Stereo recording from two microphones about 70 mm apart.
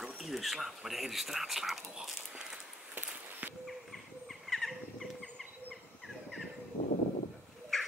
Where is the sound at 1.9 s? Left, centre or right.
Centre.